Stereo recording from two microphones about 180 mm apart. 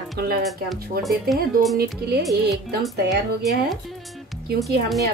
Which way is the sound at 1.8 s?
60° right (ahead or behind).